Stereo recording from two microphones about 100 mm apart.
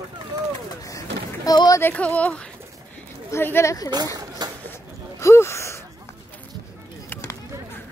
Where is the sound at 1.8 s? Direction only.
15° left (ahead or behind).